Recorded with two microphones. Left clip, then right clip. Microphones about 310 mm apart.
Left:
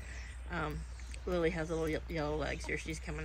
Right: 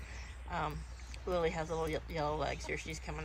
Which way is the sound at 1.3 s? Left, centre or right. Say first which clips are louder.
Left 1 dB; centre.